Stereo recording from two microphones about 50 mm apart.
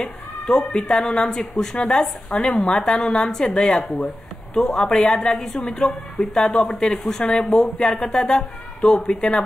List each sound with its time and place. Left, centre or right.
0.0 s cat: centre
0.9 s a woman's voice: centre